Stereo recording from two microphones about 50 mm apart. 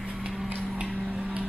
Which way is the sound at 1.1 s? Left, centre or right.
Right.